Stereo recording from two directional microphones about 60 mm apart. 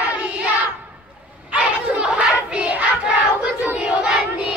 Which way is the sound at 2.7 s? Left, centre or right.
Right.